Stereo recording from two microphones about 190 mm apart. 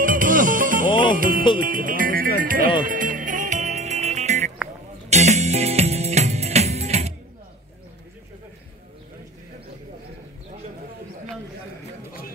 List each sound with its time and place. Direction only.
0.0 s music: 45° right (ahead or behind)
0.8 s music: 25° left (ahead or behind)
1.1 s music: 45° right (ahead or behind)